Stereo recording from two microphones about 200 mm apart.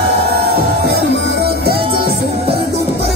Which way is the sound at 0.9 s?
55° right (ahead or behind).